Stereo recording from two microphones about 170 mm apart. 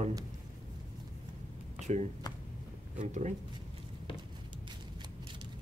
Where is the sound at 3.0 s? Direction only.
45° right (ahead or behind).